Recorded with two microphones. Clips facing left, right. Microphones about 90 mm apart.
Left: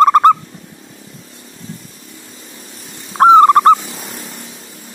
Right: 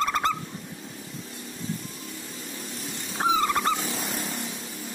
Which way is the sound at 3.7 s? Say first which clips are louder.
Even; 5° left (ahead or behind).